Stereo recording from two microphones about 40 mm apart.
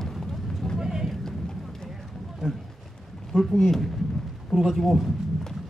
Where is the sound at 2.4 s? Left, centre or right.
Centre.